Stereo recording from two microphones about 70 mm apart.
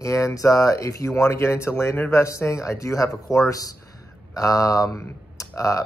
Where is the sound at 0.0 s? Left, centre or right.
Left.